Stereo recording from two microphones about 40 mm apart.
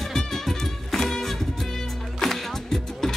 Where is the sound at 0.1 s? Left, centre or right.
Centre.